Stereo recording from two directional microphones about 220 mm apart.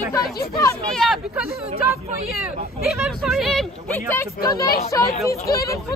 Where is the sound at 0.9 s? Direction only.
Centre (ahead or behind).